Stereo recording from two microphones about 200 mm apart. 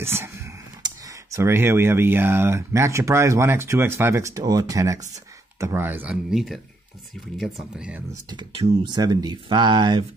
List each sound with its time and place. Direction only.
0.0 s speech: 10° right (ahead or behind)
8.1 s speech: 20° right (ahead or behind)